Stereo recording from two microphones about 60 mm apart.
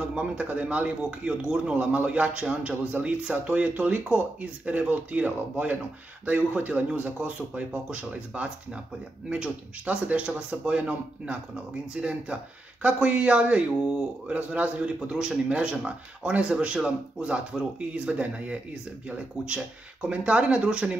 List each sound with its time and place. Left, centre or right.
0.1 s speech: right
9.8 s speech: right